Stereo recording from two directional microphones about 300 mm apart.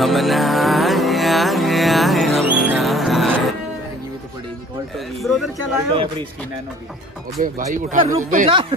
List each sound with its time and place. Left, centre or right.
0.0 s music: centre
4.9 s speech: centre
7.4 s speech: right